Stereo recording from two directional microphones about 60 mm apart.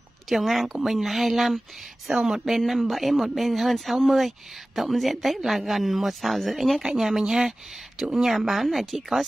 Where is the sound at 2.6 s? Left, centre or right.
Centre.